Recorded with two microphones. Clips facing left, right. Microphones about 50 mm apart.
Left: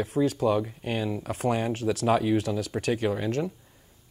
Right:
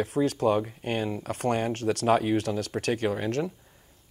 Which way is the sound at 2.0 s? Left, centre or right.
Centre.